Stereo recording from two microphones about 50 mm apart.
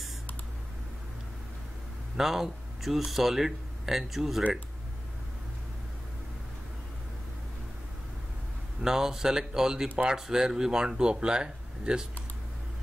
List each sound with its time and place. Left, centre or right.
2.1 s speech: centre
8.8 s speech: centre